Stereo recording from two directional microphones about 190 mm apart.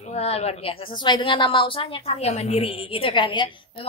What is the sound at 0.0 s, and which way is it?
A woman's voice, 35° left (ahead or behind).